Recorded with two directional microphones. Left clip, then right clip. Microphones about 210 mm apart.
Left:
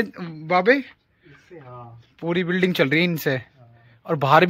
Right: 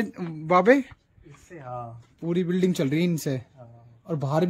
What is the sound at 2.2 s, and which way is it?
Speech, centre (ahead or behind).